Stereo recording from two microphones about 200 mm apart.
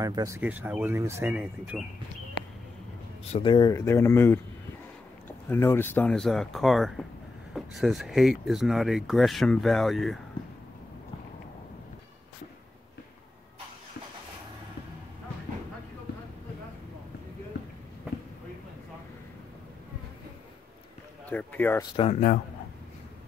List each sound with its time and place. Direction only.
0.0 s speech: 20° right (ahead or behind)
3.3 s speech: 25° left (ahead or behind)
5.5 s speech: 10° left (ahead or behind)
21.3 s a sound: 10° left (ahead or behind)
21.9 s speech: 30° left (ahead or behind)